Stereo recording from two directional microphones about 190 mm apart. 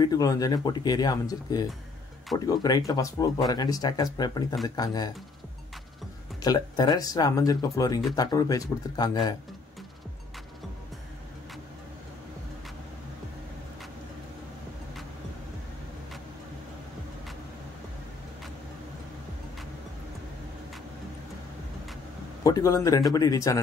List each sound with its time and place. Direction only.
0.0 s speech: 20° left (ahead or behind)
6.4 s speech: 20° left (ahead or behind)
22.4 s a man's voice: 15° left (ahead or behind)